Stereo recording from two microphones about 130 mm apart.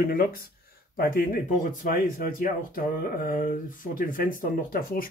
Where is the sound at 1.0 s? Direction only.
90° left.